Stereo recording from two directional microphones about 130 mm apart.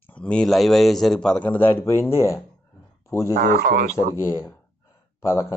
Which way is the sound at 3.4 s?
90° right.